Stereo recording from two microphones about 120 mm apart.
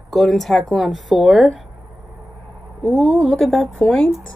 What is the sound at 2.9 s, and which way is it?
Speech, centre (ahead or behind).